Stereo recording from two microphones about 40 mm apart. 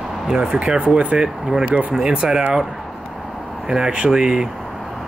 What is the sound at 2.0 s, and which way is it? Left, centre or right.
Speech, right.